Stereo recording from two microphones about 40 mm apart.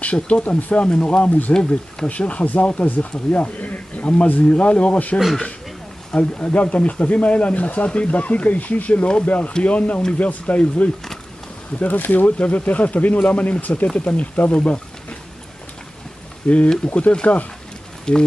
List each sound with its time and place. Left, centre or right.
0.0 s speech: left
0.8 s speech: left
6.1 s speech: left
11.8 s speech: left
16.5 s speech: left